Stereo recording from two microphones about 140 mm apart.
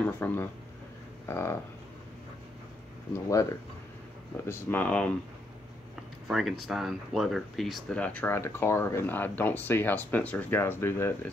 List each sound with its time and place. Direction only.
0.2 s speech: 15° left (ahead or behind)
1.2 s a sound: 20° left (ahead or behind)
3.1 s speech: 25° left (ahead or behind)
4.5 s speech: 15° left (ahead or behind)
6.2 s speech: centre (ahead or behind); by 11.1 s 15° left (ahead or behind)